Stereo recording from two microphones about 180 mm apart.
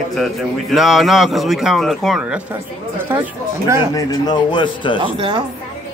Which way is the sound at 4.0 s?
20° left (ahead or behind).